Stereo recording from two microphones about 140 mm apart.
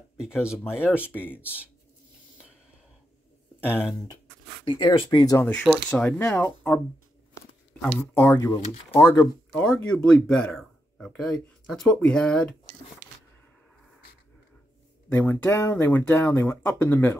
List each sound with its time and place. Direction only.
0.2 s speech: 5° right (ahead or behind)
0.7 s speech: 15° left (ahead or behind)
3.6 s speech: 15° left (ahead or behind)
4.6 s speech: 35° left (ahead or behind)
5.4 s speech: 10° left (ahead or behind)
8.0 s speech: 20° left (ahead or behind)
9.6 s speech: 10° left (ahead or behind)
15.0 s speech: 10° left (ahead or behind)